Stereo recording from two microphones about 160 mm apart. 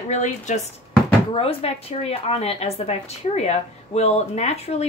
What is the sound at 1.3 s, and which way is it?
A woman's voice, 35° left (ahead or behind).